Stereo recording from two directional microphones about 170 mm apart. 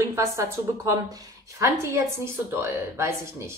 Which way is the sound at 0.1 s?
15° right (ahead or behind).